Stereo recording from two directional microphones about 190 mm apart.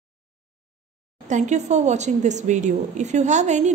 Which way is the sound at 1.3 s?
40° right (ahead or behind).